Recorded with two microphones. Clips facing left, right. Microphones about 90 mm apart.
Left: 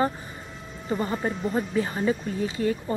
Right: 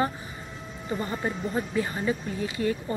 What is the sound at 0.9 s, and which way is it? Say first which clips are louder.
Speech: left 3 dB; centre (ahead or behind).